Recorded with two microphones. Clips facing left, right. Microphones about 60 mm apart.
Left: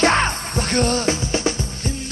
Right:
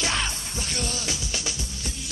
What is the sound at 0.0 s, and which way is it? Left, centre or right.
Music, left.